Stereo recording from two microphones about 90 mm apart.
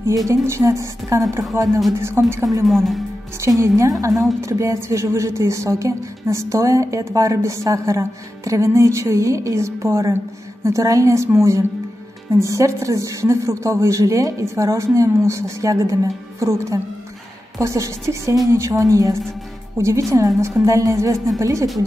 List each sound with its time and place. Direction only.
0.0 s a woman's voice: 35° right (ahead or behind)
2.6 s speech: centre (ahead or behind)
3.3 s a woman's voice: 35° right (ahead or behind)
4.1 s speech: centre (ahead or behind)
4.4 s a woman's voice: 35° right (ahead or behind)